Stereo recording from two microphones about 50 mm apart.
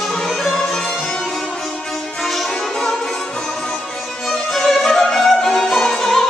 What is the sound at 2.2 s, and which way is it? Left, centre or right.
Music, centre.